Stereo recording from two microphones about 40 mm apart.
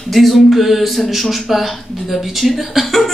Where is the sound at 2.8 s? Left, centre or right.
Centre.